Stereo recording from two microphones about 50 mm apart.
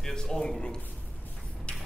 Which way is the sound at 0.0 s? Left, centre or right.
Centre.